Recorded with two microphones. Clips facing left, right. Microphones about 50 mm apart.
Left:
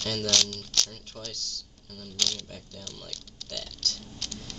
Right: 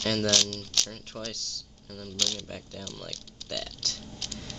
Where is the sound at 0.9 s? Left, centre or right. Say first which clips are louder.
Right 4 dB; right.